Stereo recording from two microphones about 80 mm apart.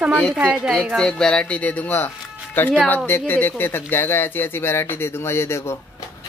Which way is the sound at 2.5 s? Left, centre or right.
Left.